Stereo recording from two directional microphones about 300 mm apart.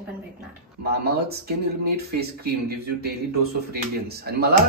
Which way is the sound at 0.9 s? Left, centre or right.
Right.